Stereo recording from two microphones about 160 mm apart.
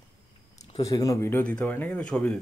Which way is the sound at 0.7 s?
25° left (ahead or behind).